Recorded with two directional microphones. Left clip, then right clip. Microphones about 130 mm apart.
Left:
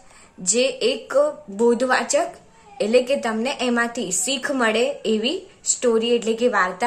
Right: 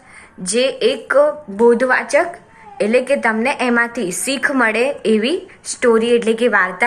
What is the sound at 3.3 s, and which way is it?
Speech, 60° left (ahead or behind).